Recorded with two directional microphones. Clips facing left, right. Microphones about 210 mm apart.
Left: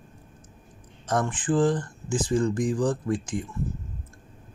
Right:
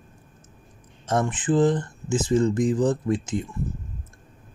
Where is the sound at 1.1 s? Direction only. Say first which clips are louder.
Right 2 dB; 20° right (ahead or behind).